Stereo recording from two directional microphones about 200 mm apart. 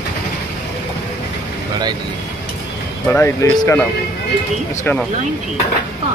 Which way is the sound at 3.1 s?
10° left (ahead or behind).